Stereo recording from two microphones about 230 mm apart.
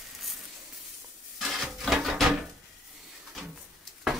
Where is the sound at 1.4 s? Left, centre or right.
Centre.